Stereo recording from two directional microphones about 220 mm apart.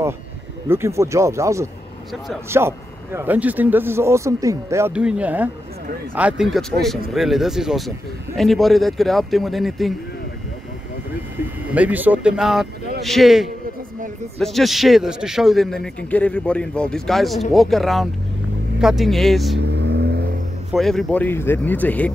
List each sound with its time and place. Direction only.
0.7 s a man's voice: 10° right (ahead or behind)
11.7 s a man's voice: 5° right (ahead or behind)
19.6 s vehicle: 50° right (ahead or behind)
20.7 s speech: centre (ahead or behind)